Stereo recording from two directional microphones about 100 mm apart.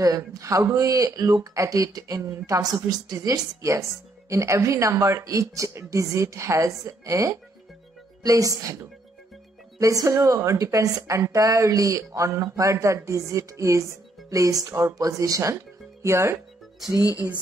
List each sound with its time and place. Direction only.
0.0 s a woman's voice: 35° right (ahead or behind)